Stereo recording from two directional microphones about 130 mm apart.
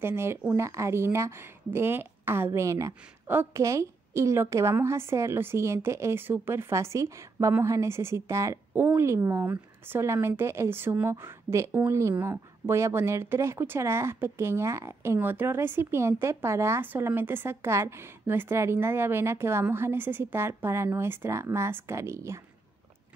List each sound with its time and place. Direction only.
0.0 s speech: 20° right (ahead or behind)